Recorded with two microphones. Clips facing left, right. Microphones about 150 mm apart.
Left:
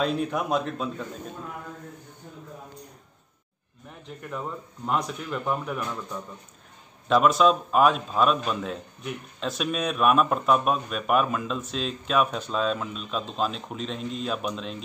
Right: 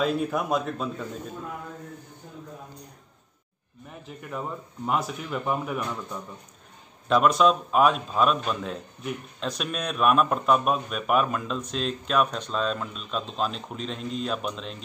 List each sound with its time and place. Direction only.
0.0 s a man's voice: centre (ahead or behind)
4.2 s a man's voice: 5° right (ahead or behind)
7.1 s a man's voice: centre (ahead or behind)